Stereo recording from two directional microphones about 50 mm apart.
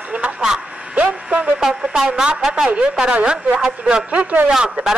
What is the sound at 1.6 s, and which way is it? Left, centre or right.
Speech, centre.